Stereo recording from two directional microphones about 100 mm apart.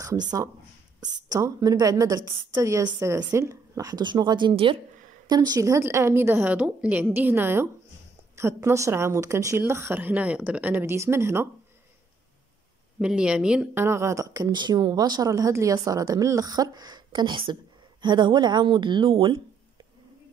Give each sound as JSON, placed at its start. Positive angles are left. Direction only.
{"t": 0.0, "sound": "speech", "side_deg": -40}
{"t": 4.0, "sound": "speech", "side_deg": -45}
{"t": 5.3, "sound": "a woman's voice", "side_deg": -40}
{"t": 13.0, "sound": "speech", "side_deg": -10}
{"t": 13.7, "sound": "speech", "side_deg": -25}